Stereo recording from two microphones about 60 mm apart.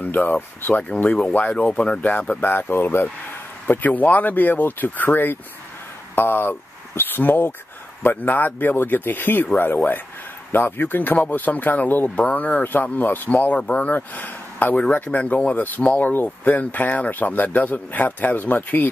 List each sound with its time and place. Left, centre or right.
0.0 s speech: left
0.7 s speech: left
10.5 s speech: left